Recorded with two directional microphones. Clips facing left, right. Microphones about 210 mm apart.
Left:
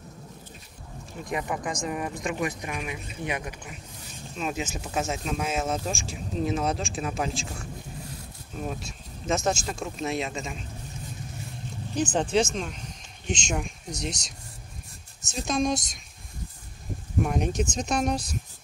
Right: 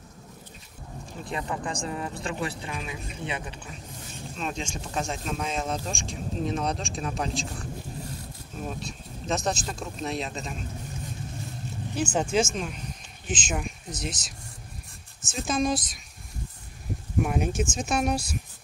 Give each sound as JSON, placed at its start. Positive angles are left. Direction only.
{"t": 1.3, "sound": "speech", "side_deg": 15}
{"t": 8.6, "sound": "speech", "side_deg": 0}
{"t": 11.9, "sound": "speech", "side_deg": -10}
{"t": 15.3, "sound": "speech", "side_deg": 0}
{"t": 17.2, "sound": "speech", "side_deg": -5}